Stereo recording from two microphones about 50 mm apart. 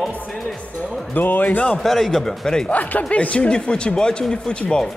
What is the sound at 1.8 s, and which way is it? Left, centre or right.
Speech, centre.